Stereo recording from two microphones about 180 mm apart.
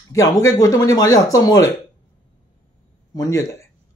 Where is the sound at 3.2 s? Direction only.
20° left (ahead or behind).